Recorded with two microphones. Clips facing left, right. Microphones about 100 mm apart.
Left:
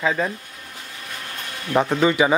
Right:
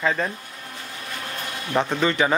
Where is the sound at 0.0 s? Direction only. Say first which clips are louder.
Left 1 dB; 5° left (ahead or behind).